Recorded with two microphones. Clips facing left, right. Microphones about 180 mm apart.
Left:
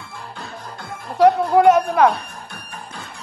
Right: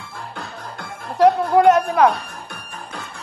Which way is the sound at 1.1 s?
Centre (ahead or behind).